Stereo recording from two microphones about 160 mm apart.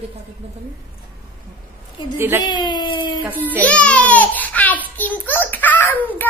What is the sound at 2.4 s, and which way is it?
Speech, 30° left (ahead or behind).